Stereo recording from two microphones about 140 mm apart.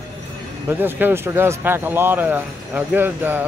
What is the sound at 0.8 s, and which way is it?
Speech, 15° right (ahead or behind).